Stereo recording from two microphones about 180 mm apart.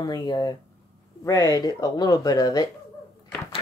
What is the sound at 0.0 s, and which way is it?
Speech, 25° left (ahead or behind).